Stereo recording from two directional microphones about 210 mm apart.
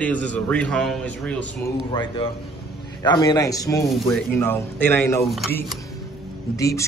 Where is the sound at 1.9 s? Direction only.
25° left (ahead or behind).